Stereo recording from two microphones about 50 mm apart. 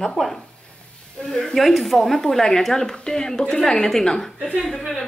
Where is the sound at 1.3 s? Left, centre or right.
Centre.